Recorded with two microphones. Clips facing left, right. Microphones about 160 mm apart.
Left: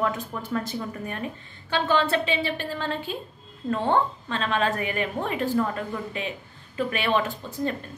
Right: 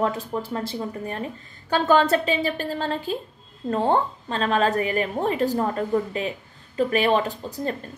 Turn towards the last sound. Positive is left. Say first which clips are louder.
# right 1 dB
turn(degrees=-40)  # may be behind; listen again after turning